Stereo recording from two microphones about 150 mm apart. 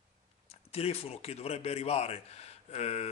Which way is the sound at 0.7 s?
45° left (ahead or behind).